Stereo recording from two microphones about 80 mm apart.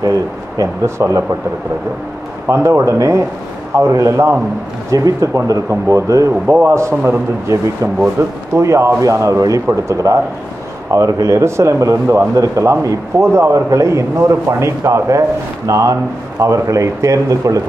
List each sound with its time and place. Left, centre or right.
0.6 s a man's voice: right
2.4 s a man's voice: right